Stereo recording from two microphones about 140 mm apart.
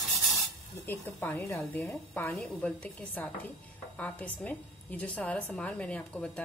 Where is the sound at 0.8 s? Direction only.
15° left (ahead or behind).